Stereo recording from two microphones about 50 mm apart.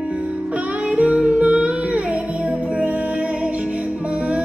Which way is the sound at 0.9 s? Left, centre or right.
Right.